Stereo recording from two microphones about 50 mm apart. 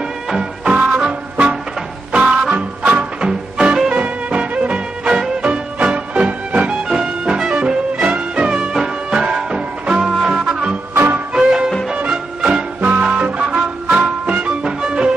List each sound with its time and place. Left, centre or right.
0.3 s music: centre
2.5 s music: right
3.2 s music: centre
3.9 s music: right
8.5 s music: centre